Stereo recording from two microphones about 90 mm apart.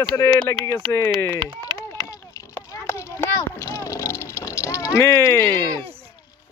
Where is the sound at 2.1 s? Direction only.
35° left (ahead or behind).